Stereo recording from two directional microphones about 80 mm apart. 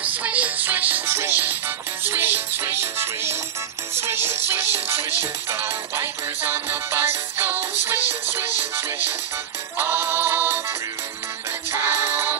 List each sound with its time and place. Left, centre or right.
0.0 s music: centre